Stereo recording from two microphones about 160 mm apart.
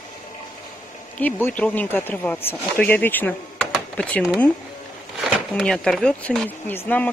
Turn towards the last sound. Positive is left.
turn(degrees=10)  # may be behind; listen again after turning